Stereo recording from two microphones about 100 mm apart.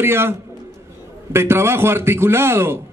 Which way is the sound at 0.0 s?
25° right (ahead or behind).